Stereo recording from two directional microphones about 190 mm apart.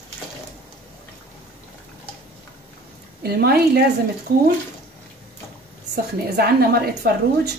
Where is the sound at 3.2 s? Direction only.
55° right (ahead or behind).